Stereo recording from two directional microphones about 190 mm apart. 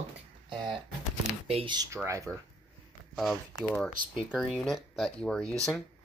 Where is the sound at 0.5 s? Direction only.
25° right (ahead or behind).